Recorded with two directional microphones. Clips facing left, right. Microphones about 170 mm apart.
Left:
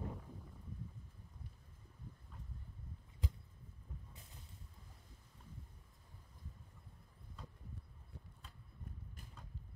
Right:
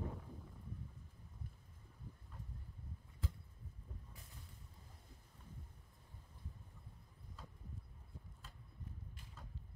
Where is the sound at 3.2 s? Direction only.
15° left (ahead or behind).